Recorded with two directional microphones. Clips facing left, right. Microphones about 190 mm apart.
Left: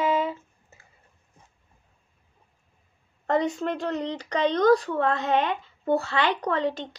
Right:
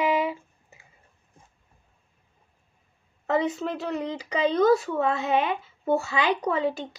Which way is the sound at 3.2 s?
5° right (ahead or behind).